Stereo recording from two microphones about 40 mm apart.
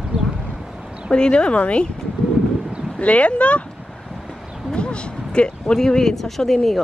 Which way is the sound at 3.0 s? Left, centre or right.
Left.